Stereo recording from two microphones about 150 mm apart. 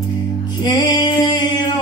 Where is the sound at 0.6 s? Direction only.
30° left (ahead or behind).